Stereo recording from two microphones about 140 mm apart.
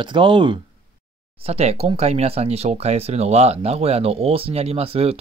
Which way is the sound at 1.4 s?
45° right (ahead or behind).